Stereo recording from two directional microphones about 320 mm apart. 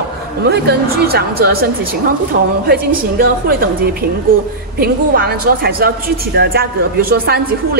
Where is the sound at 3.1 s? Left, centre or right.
Right.